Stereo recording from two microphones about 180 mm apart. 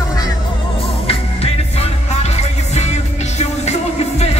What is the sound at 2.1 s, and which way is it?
Music, 40° left (ahead or behind).